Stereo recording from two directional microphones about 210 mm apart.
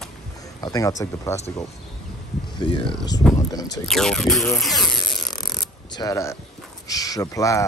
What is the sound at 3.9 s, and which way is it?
Speech, centre (ahead or behind).